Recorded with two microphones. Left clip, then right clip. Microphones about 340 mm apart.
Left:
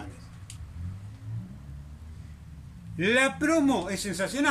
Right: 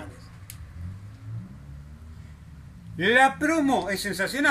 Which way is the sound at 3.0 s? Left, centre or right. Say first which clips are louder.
Right 5 dB; centre.